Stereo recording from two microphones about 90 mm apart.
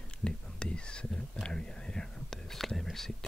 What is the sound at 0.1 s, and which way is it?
Whispering, 10° left (ahead or behind).